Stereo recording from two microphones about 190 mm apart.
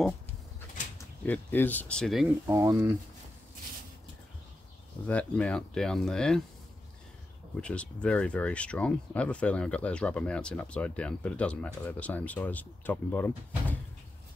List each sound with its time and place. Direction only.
1.2 s speech: 10° left (ahead or behind)
2.4 s speech: 15° right (ahead or behind)
5.0 s speech: 5° left (ahead or behind)
7.6 s speech: 5° left (ahead or behind)